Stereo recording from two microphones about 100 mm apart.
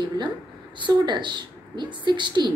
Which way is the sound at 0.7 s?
50° right (ahead or behind).